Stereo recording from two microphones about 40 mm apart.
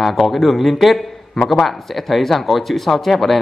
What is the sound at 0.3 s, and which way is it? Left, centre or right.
A man's voice, centre.